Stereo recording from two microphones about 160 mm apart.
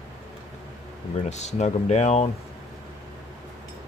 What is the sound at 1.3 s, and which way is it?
Speech, 45° left (ahead or behind).